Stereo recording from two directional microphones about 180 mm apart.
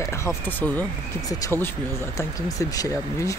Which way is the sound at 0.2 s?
10° left (ahead or behind).